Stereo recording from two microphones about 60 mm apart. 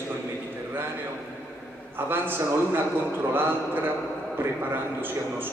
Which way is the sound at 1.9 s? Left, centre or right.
Right.